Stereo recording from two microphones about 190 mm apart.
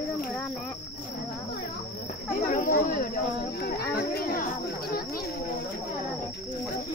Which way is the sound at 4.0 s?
50° left (ahead or behind).